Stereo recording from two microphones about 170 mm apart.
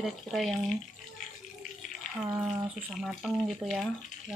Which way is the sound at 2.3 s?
20° right (ahead or behind).